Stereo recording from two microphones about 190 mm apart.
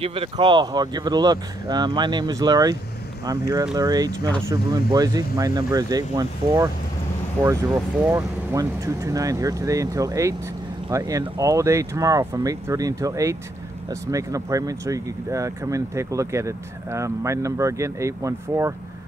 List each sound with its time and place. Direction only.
0.0 s speech: 30° right (ahead or behind)
8.0 s speech: 15° right (ahead or behind)